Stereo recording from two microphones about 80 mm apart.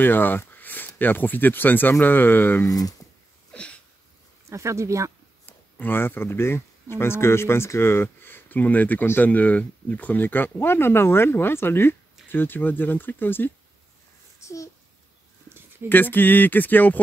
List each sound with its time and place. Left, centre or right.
0.0 s speech: left
3.5 s a sound: centre
4.5 s speech: right
5.4 s speech: left
14.4 s babbling: left
15.9 s speech: left